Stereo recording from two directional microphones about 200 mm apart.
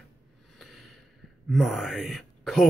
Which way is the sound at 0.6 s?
Centre (ahead or behind).